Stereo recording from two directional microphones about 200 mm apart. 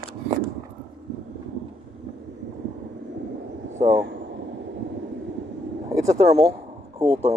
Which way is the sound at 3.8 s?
20° right (ahead or behind).